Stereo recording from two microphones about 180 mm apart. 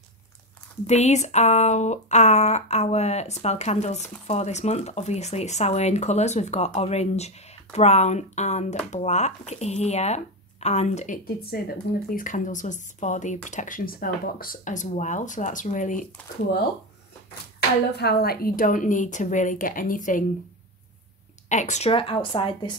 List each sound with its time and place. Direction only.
0.8 s speech: 40° left (ahead or behind)
11.2 s a woman's voice: 60° left (ahead or behind)
17.6 s a woman's voice: 60° left (ahead or behind)
21.5 s speech: 40° left (ahead or behind)